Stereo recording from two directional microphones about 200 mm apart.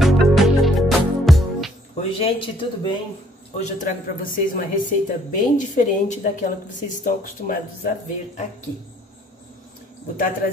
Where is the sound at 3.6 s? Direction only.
40° left (ahead or behind).